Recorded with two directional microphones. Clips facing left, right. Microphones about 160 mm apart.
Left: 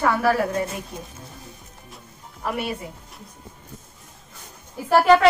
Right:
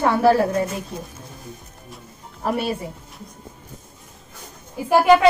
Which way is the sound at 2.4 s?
35° right (ahead or behind).